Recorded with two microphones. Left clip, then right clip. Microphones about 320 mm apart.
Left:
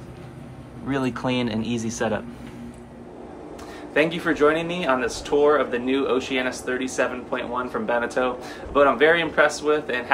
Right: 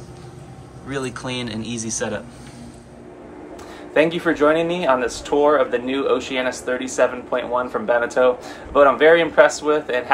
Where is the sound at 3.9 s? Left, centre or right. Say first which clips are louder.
Right 4 dB; centre.